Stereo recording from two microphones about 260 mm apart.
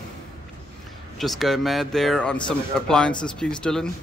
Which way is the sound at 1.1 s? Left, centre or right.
Centre.